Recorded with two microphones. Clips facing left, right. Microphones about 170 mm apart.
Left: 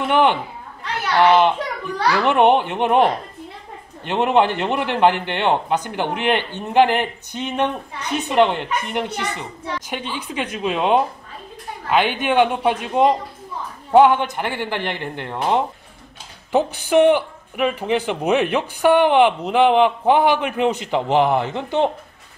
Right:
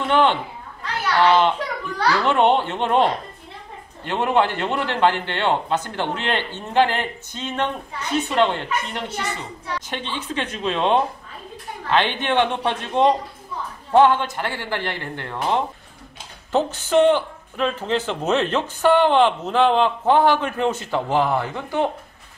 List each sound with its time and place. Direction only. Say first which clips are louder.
0.1 s a man's voice: left 1 dB; 15° left (ahead or behind)